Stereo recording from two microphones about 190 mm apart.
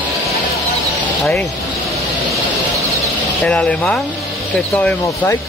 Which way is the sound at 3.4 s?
5° left (ahead or behind).